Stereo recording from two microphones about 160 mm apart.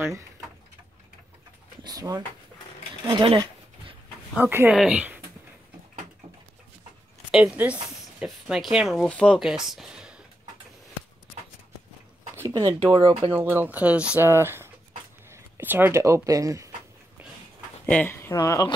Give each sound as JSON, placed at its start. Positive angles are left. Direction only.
{"t": 1.8, "sound": "speech", "side_deg": -25}
{"t": 4.4, "sound": "speech", "side_deg": -15}
{"t": 7.2, "sound": "speech", "side_deg": -5}
{"t": 12.4, "sound": "a sound", "side_deg": -20}
{"t": 12.7, "sound": "speech", "side_deg": -35}
{"t": 13.3, "sound": "speech", "side_deg": -15}
{"t": 17.8, "sound": "speech", "side_deg": 10}